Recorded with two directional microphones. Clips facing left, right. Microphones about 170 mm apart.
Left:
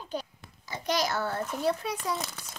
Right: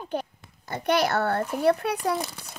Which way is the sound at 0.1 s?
60° right (ahead or behind).